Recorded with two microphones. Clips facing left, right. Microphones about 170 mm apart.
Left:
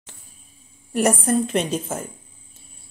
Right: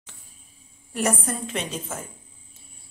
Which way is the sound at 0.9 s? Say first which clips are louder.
Left 7 dB; 50° left (ahead or behind).